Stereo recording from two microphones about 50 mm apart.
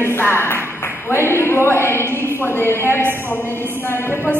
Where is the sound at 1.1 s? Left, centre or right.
Left.